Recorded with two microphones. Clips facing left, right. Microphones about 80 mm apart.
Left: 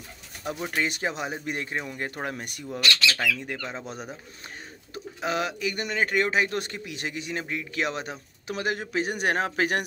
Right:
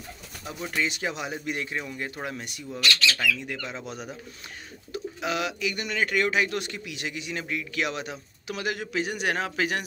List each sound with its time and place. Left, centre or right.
0.7 s speech: left
3.7 s speech: left